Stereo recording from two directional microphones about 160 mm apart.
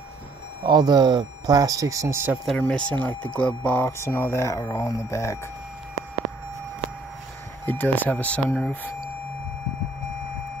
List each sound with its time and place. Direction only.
0.7 s speech: 25° right (ahead or behind)
2.4 s speech: 5° left (ahead or behind)
7.6 s speech: 10° left (ahead or behind)